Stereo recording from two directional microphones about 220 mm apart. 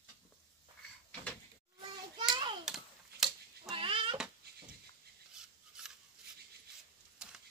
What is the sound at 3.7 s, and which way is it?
Cat, 25° right (ahead or behind).